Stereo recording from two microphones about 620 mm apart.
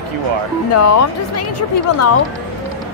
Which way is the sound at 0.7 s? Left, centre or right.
Left.